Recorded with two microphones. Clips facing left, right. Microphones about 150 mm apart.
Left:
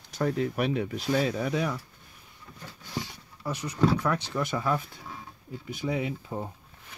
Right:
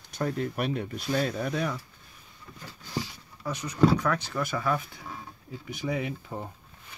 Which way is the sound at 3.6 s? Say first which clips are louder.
Right 2 dB; 20° left (ahead or behind).